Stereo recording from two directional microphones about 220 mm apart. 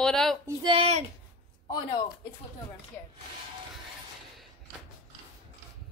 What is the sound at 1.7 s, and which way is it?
Speech, 20° left (ahead or behind).